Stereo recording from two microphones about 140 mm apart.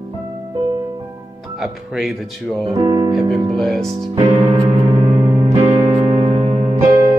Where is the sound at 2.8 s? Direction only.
25° right (ahead or behind).